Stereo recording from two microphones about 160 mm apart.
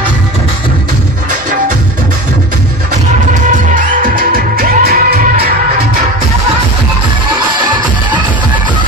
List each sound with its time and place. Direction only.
3.7 s music: 60° right (ahead or behind)